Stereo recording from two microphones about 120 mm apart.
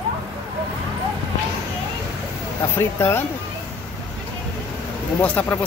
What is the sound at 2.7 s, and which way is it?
Speech, 20° left (ahead or behind).